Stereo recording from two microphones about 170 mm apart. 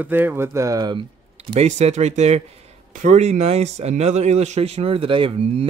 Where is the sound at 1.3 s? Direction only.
40° right (ahead or behind).